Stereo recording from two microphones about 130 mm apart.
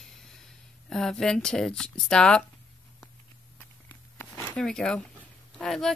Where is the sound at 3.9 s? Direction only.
15° left (ahead or behind).